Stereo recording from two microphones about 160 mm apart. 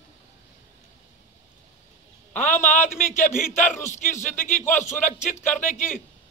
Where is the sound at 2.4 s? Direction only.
50° left (ahead or behind).